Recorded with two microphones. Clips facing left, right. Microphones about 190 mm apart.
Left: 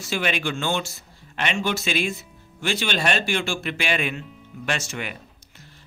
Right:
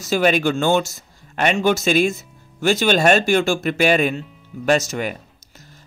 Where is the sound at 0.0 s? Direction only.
40° right (ahead or behind).